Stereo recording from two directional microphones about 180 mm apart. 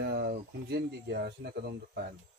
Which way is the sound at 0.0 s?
60° right (ahead or behind).